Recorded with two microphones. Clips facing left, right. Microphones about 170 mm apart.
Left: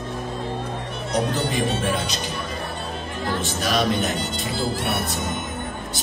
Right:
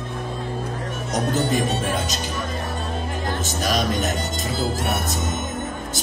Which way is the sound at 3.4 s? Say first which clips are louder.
Left 1 dB; 45° right (ahead or behind).